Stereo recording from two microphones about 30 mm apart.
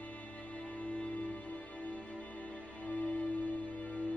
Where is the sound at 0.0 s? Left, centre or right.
Left.